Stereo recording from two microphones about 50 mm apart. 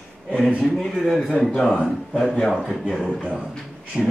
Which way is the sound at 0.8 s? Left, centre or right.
Centre.